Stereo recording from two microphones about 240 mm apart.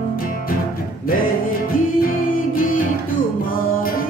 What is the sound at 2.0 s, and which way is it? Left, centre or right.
Music, left.